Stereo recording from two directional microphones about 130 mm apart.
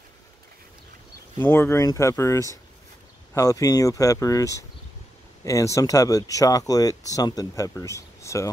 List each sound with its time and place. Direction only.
1.4 s speech: 15° left (ahead or behind)